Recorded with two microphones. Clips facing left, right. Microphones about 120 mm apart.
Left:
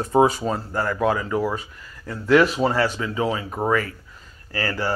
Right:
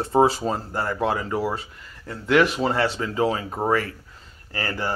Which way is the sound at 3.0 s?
35° right (ahead or behind).